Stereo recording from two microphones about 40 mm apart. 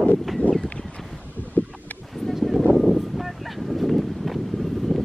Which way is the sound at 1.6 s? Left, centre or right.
Left.